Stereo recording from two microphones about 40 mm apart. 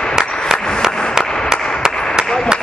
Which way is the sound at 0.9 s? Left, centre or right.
Centre.